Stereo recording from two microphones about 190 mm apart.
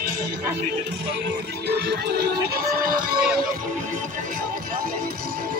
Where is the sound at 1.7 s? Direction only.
60° right (ahead or behind).